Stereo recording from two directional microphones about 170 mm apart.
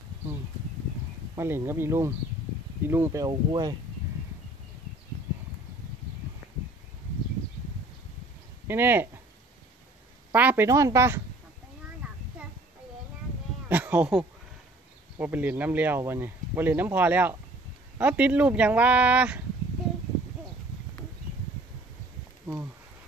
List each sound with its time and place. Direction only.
1.3 s speech: 20° right (ahead or behind)
8.6 s speech: 10° right (ahead or behind)
10.3 s speech: 10° right (ahead or behind)
13.7 s speech: 10° right (ahead or behind)